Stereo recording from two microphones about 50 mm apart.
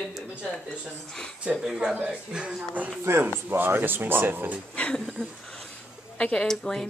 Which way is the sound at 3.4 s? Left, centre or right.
Right.